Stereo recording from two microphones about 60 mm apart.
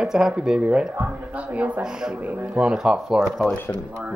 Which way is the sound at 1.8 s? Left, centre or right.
Centre.